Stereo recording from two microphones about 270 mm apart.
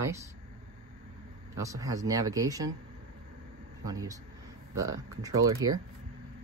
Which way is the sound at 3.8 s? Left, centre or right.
Centre.